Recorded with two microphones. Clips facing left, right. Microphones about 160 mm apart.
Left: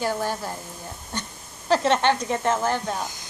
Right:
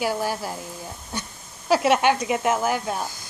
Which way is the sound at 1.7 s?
10° right (ahead or behind).